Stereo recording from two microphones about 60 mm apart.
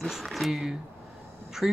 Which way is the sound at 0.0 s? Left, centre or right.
Centre.